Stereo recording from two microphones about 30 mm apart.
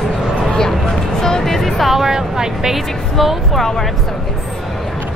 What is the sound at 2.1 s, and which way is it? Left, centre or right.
Speech, right.